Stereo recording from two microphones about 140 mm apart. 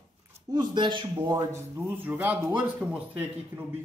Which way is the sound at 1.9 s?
10° right (ahead or behind).